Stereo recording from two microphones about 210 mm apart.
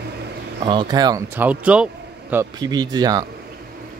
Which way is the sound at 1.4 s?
5° right (ahead or behind).